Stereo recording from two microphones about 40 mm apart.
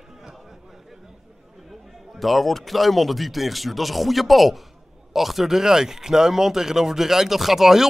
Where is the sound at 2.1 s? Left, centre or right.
Centre.